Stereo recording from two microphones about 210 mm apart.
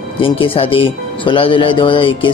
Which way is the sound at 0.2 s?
25° left (ahead or behind).